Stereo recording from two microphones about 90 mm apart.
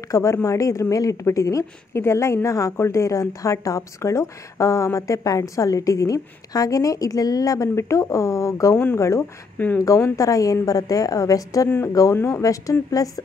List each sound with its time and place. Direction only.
0.1 s a woman's voice: 35° left (ahead or behind)